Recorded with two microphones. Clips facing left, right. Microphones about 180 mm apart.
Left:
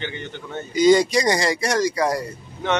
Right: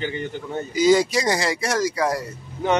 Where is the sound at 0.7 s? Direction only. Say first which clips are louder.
Left 2 dB; 5° right (ahead or behind).